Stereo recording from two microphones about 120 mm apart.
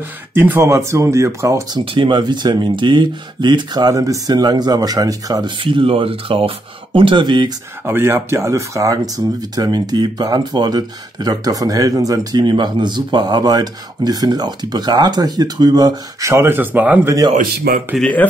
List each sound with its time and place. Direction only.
0.3 s speech: 20° right (ahead or behind)
2.0 s speech: 40° right (ahead or behind)
7.8 s speech: 20° right (ahead or behind)
17.9 s speech: 10° left (ahead or behind)